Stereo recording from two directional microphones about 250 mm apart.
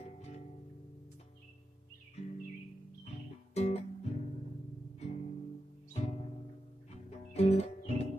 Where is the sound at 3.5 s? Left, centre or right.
Left.